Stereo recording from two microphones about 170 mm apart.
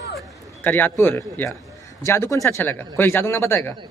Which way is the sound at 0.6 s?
10° left (ahead or behind).